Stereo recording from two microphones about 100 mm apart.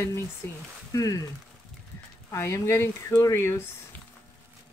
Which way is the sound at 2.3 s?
25° left (ahead or behind).